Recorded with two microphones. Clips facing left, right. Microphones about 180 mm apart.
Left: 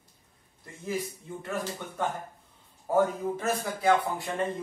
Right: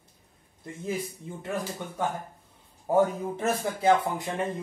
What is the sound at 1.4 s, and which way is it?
A man's voice, 15° right (ahead or behind).